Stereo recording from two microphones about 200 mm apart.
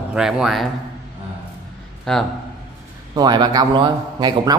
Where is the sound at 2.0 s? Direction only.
Centre (ahead or behind).